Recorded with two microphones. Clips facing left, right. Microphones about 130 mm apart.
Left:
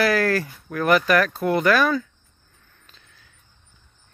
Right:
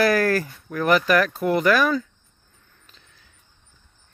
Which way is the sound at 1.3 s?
10° right (ahead or behind).